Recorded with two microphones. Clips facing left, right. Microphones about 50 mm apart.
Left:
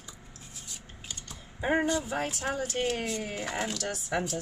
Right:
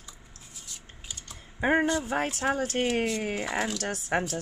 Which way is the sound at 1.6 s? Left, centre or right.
Right.